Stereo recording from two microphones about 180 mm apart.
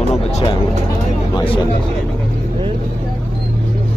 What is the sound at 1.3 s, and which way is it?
Speech, 30° left (ahead or behind).